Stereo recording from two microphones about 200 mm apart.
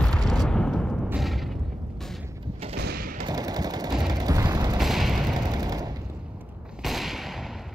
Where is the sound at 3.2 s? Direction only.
20° right (ahead or behind).